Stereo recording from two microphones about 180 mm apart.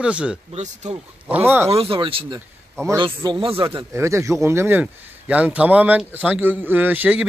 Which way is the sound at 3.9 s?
15° right (ahead or behind).